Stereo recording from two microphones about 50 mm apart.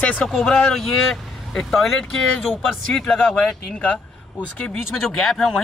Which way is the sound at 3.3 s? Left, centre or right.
Centre.